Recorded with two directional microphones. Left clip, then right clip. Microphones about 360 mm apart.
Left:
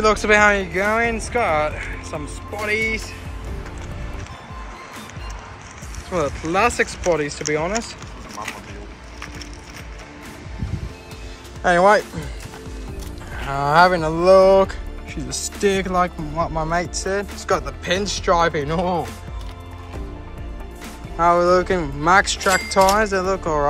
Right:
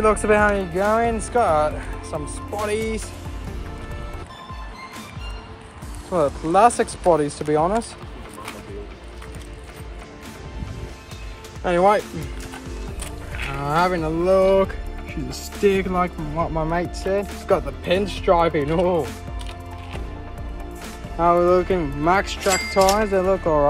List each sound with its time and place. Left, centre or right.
0.0 s speech: centre
6.1 s speech: centre
11.6 s speech: centre
13.5 s speech: centre
21.2 s speech: centre